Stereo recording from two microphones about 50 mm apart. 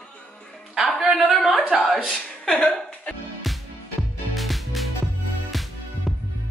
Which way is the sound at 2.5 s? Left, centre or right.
Left.